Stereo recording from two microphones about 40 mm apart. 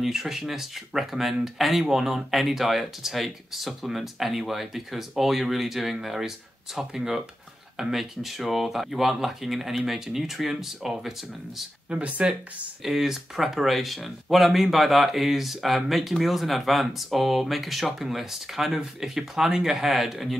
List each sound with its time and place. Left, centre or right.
0.0 s speech: centre
11.9 s speech: right
12.8 s speech: centre